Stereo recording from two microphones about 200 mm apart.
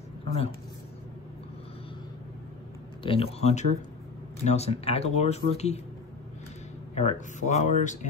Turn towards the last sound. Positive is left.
turn(degrees=35)  # may be behind; listen again after turning